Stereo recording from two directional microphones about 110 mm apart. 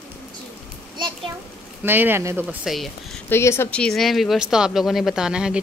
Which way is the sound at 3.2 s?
20° left (ahead or behind).